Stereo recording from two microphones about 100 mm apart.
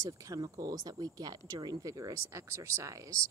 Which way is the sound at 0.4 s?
40° right (ahead or behind).